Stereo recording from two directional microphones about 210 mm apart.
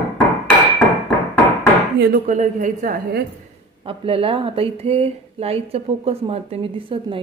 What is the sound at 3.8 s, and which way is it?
Speech, 25° right (ahead or behind).